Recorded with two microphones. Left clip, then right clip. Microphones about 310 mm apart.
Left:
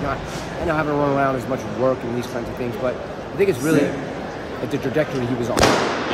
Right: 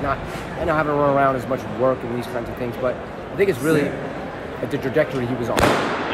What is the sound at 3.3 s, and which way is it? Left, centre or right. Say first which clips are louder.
Speech: even; centre.